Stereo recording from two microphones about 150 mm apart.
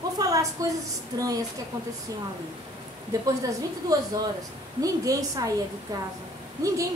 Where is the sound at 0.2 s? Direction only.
25° right (ahead or behind).